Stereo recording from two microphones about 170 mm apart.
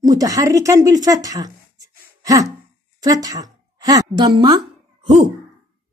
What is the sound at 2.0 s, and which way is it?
Throat clearing, 20° right (ahead or behind).